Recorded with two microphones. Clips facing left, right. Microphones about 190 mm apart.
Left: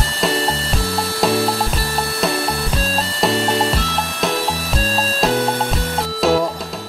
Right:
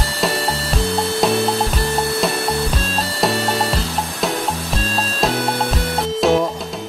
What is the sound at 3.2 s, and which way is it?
Music, centre (ahead or behind).